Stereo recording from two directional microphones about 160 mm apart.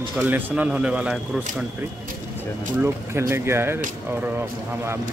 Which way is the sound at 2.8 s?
15° right (ahead or behind).